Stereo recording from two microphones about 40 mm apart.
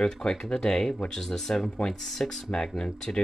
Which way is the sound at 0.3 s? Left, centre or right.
Centre.